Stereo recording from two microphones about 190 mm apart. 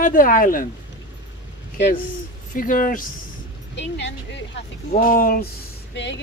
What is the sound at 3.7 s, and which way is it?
Speech, 70° left (ahead or behind).